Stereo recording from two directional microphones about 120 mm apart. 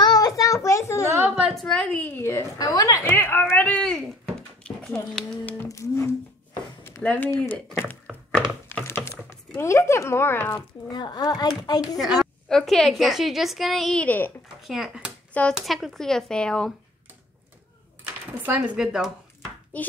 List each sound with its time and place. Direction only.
0.0 s child singing: 30° left (ahead or behind)
1.3 s a woman's voice: centre (ahead or behind); by 2.4 s 20° left (ahead or behind)
2.6 s speech: 30° left (ahead or behind)
3.1 s a woman's voice: 15° left (ahead or behind)
5.7 s speech: 25° left (ahead or behind)
7.0 s a woman's voice: 10° left (ahead or behind)
8.4 s a sound: 15° left (ahead or behind)
9.6 s speech: 25° left (ahead or behind)
10.9 s a child's voice: 35° left (ahead or behind)
12.2 s a woman's voice: 5° left (ahead or behind)
14.0 s a woman's voice: 15° left (ahead or behind)
14.6 s a woman's voice: 5° right (ahead or behind)
18.4 s speech: 15° right (ahead or behind)
19.7 s a woman's voice: 10° left (ahead or behind)